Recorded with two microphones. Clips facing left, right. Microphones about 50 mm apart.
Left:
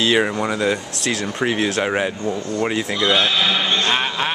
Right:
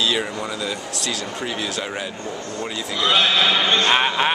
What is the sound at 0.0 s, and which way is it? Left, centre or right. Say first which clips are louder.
Speech: left 5 dB; left.